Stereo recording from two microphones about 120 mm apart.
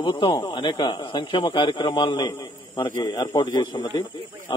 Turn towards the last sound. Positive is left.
turn(degrees=35)  # may be behind; listen again after turning